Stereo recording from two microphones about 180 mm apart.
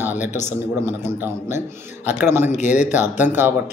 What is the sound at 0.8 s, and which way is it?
A man's voice, 15° right (ahead or behind).